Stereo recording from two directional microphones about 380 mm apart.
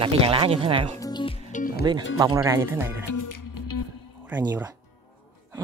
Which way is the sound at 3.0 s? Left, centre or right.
Left.